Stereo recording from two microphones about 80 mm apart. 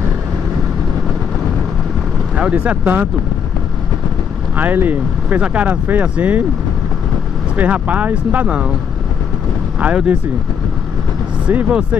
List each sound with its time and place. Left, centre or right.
2.3 s speech: centre
4.6 s speech: right
7.5 s speech: centre
9.8 s speech: centre
11.4 s speech: centre